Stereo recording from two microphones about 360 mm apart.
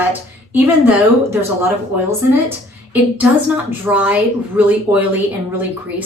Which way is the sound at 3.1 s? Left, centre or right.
Centre.